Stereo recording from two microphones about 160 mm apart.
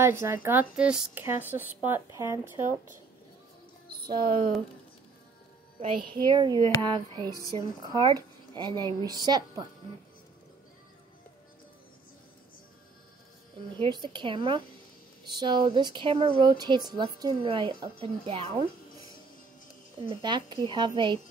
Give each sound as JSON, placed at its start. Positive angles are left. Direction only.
{"t": 0.0, "sound": "speech", "side_deg": -15}
{"t": 4.1, "sound": "speech", "side_deg": -60}
{"t": 6.2, "sound": "a woman's voice", "side_deg": -30}
{"t": 13.7, "sound": "a woman's voice", "side_deg": -30}
{"t": 20.1, "sound": "speech", "side_deg": -30}